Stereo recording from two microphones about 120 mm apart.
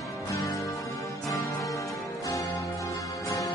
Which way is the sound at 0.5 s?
25° left (ahead or behind).